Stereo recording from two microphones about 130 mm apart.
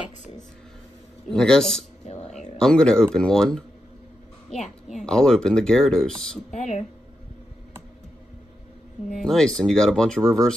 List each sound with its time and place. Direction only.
1.3 s speech: 5° left (ahead or behind)
5.0 s speech: 5° left (ahead or behind)
6.5 s speech: 55° left (ahead or behind)
9.2 s speech: 5° left (ahead or behind)